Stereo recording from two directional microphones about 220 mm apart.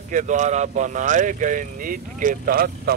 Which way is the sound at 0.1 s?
35° right (ahead or behind).